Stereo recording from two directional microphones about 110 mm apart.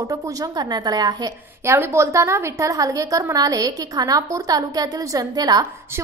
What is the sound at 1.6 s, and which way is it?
A woman's voice, 25° right (ahead or behind).